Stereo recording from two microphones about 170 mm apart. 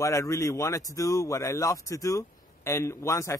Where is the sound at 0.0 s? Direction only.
20° left (ahead or behind).